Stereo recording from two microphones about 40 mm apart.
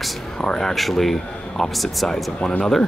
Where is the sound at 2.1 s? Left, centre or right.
Left.